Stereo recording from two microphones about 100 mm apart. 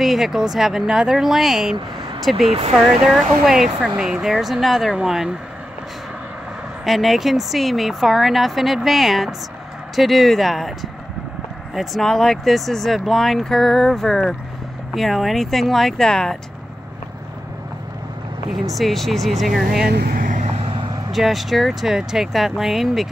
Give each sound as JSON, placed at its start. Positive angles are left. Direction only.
{"t": 0.0, "sound": "speech", "side_deg": -5}
{"t": 6.8, "sound": "speech", "side_deg": 0}
{"t": 18.7, "sound": "speech", "side_deg": 0}
{"t": 20.5, "sound": "vehicle", "side_deg": -65}
{"t": 21.1, "sound": "speech", "side_deg": 0}